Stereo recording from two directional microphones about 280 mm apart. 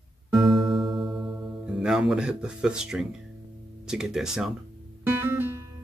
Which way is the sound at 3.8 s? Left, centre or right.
Centre.